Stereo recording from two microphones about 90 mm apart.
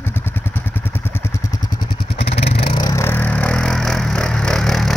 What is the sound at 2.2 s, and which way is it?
Vehicle, 90° left.